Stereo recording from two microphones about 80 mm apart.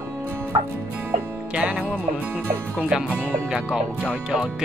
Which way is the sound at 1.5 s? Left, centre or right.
Centre.